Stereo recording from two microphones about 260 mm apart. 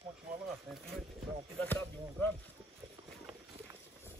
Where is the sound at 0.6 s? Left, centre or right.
Centre.